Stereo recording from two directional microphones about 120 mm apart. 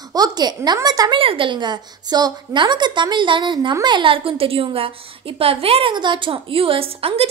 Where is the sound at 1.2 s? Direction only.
45° right (ahead or behind).